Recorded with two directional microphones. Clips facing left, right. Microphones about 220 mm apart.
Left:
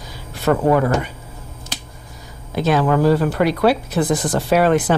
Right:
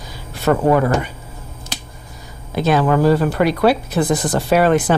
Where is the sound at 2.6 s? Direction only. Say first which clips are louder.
Right 1 dB; 20° right (ahead or behind).